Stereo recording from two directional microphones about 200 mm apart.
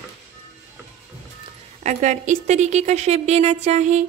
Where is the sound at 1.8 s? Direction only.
35° right (ahead or behind).